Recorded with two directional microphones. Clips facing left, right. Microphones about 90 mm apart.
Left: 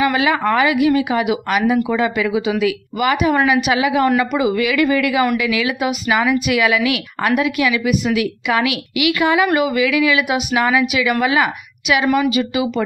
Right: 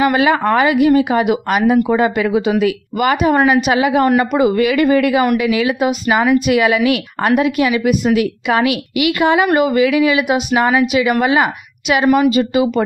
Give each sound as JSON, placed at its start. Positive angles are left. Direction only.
{"t": 0.0, "sound": "speech", "side_deg": -40}